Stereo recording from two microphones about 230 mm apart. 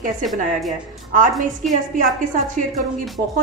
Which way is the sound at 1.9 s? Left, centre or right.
Right.